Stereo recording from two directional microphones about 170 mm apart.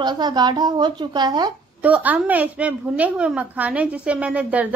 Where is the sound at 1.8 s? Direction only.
10° right (ahead or behind).